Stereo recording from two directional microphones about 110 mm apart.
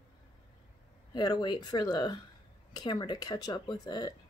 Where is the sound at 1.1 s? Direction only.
40° left (ahead or behind).